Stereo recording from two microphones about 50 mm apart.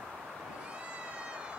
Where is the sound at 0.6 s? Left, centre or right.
Right.